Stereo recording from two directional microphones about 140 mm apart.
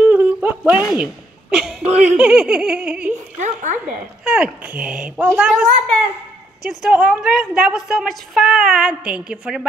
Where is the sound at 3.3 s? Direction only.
60° right (ahead or behind).